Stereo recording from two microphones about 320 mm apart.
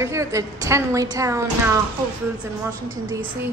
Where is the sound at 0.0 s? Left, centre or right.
Centre.